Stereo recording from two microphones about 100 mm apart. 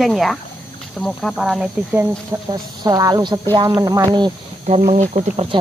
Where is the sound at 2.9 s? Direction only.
40° right (ahead or behind).